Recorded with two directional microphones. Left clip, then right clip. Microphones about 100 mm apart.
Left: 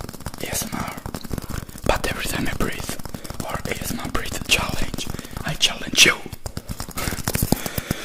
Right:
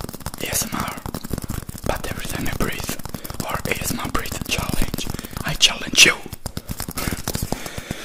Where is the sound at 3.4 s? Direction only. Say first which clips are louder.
Right 4 dB; 20° right (ahead or behind).